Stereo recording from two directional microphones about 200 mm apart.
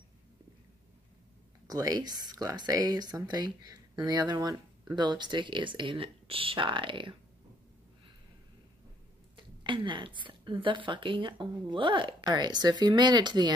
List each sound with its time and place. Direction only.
1.7 s speech: 20° right (ahead or behind)
9.6 s speech: 25° right (ahead or behind)